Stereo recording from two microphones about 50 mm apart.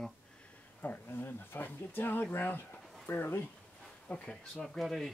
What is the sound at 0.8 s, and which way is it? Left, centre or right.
Speech, left.